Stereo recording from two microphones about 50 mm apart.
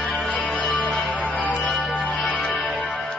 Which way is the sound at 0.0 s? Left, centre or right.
Centre.